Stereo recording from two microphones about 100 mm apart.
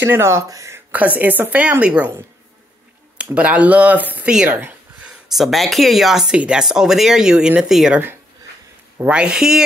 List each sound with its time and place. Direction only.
0.0 s speech: 25° right (ahead or behind)
0.9 s speech: 15° right (ahead or behind)
3.2 s speech: 15° right (ahead or behind)
4.5 s a sound: 20° right (ahead or behind)
5.3 s speech: centre (ahead or behind)
9.0 s speech: 10° right (ahead or behind)